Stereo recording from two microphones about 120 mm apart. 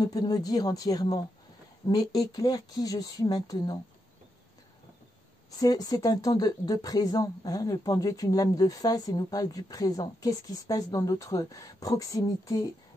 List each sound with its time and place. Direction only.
0.0 s speech: 30° left (ahead or behind)
5.5 s speech: 30° left (ahead or behind)